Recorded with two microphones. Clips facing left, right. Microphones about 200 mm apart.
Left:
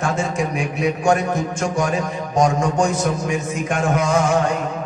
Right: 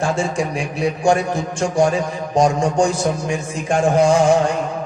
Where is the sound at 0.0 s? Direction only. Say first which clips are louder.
Right 2 dB; 30° right (ahead or behind).